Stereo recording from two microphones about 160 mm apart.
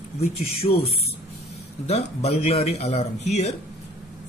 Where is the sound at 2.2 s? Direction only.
40° left (ahead or behind).